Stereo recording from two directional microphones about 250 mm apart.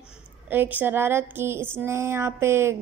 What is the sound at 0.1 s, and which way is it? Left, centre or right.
A woman's voice, centre.